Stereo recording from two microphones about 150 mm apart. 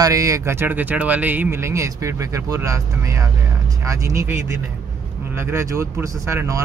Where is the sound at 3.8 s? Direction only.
20° right (ahead or behind).